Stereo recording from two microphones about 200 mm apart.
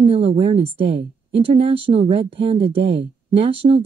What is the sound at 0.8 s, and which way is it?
Speech, 60° right (ahead or behind).